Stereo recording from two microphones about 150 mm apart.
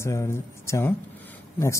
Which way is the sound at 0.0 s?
20° left (ahead or behind).